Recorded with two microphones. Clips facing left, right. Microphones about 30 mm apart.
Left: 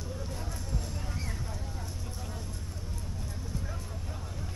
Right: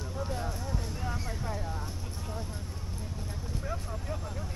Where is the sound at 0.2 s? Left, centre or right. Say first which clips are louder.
Right 6 dB; right.